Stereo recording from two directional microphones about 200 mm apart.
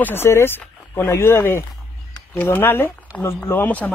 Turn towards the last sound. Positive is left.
turn(degrees=5)  # may be behind; listen again after turning